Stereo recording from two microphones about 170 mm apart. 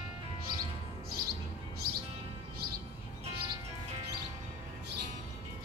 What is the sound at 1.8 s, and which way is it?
Music, 60° right (ahead or behind).